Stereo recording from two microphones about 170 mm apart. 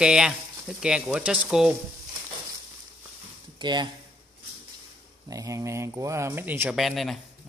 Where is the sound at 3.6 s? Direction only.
25° right (ahead or behind).